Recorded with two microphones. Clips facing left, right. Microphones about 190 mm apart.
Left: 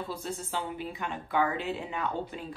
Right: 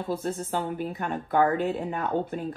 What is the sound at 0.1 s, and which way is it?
A woman's voice, 50° right (ahead or behind).